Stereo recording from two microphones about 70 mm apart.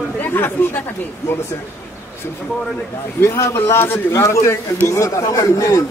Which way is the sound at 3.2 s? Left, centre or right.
Left.